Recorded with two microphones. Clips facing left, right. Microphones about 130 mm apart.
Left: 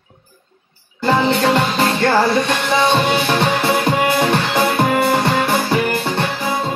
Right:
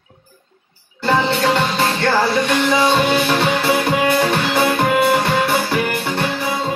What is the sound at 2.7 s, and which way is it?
Speech, 25° left (ahead or behind).